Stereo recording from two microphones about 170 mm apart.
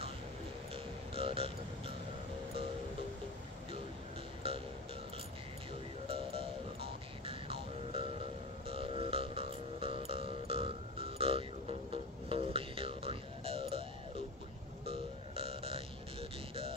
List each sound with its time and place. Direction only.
1.1 s a sound: 35° right (ahead or behind)
4.4 s music: 35° right (ahead or behind)
6.0 s music: 35° right (ahead or behind)
14.9 s burping: 35° right (ahead or behind)